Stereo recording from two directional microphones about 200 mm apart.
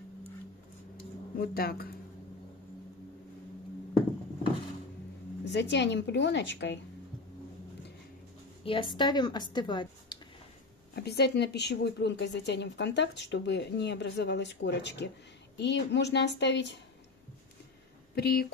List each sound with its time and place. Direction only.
1.4 s speech: 50° left (ahead or behind)
5.4 s a woman's voice: 60° left (ahead or behind)
8.6 s a woman's voice: 25° left (ahead or behind)
11.0 s a woman's voice: 55° left (ahead or behind)
18.1 s speech: 50° left (ahead or behind)